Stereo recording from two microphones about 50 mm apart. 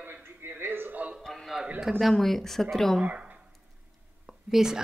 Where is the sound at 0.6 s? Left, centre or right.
Right.